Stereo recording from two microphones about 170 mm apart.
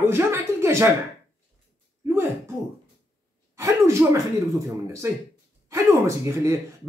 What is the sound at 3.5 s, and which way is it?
Speech, 15° right (ahead or behind).